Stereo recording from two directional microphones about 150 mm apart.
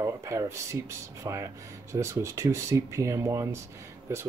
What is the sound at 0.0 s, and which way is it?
Speech, 20° right (ahead or behind).